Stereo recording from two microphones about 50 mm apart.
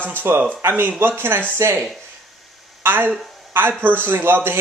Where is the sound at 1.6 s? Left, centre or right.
Right.